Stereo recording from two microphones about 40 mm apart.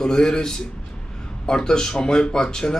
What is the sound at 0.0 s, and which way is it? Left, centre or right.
Speech, centre.